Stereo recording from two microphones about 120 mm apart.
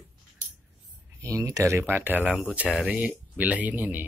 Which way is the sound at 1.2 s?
25° right (ahead or behind).